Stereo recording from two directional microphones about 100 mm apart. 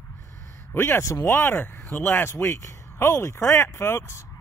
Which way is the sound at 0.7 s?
25° left (ahead or behind).